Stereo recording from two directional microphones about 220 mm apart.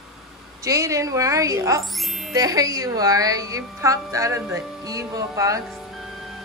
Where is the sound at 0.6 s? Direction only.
15° right (ahead or behind).